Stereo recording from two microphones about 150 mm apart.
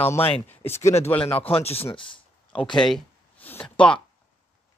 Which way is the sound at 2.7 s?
5° left (ahead or behind).